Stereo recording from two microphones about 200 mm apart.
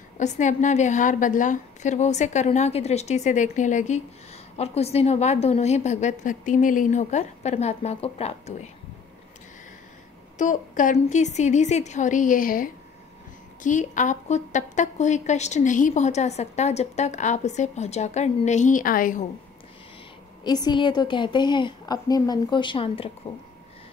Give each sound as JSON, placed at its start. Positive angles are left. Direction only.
{"t": 0.2, "sound": "a woman's voice", "side_deg": 35}
{"t": 10.3, "sound": "a woman's voice", "side_deg": 40}
{"t": 20.4, "sound": "a woman's voice", "side_deg": 20}